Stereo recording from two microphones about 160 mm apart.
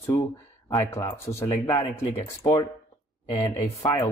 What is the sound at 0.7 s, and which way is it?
Speech, 15° left (ahead or behind).